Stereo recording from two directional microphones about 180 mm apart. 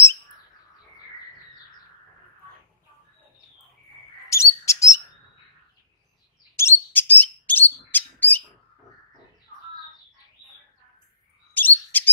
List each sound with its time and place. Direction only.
4.3 s bird: 15° left (ahead or behind)
6.5 s bird: 10° left (ahead or behind)
11.5 s chirp: 10° left (ahead or behind)